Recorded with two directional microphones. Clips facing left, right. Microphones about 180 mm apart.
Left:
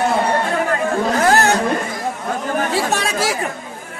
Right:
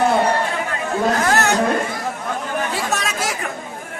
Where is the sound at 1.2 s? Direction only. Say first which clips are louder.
Left 4 dB; 35° left (ahead or behind).